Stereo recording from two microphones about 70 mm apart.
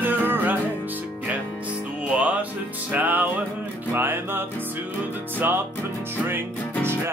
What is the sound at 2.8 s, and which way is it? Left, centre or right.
Music, right.